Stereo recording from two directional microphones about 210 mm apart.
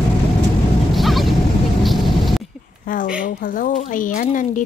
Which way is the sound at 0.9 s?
Centre (ahead or behind).